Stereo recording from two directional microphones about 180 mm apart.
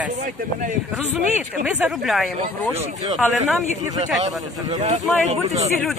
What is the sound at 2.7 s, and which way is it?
Speech, 35° right (ahead or behind).